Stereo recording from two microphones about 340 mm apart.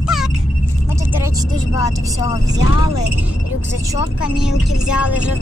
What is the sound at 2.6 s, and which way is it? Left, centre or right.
Speech, left.